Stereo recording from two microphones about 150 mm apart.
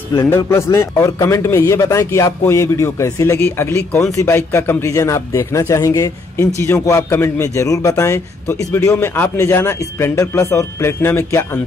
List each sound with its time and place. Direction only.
0.1 s a man's voice: 20° left (ahead or behind)